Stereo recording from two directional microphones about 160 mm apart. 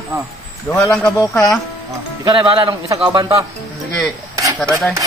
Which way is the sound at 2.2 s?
30° right (ahead or behind).